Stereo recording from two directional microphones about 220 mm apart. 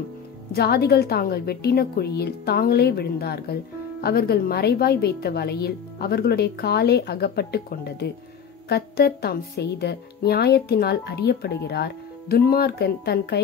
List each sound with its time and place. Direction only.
0.5 s speech: 45° left (ahead or behind)